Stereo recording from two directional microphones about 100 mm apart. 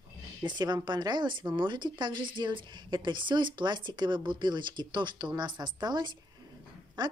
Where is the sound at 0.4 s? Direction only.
45° right (ahead or behind).